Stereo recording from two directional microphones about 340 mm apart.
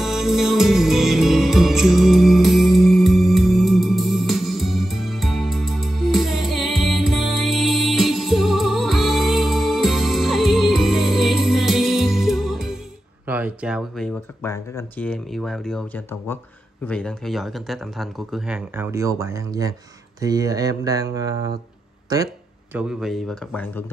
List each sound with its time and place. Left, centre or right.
0.0 s music: centre
13.3 s speech: centre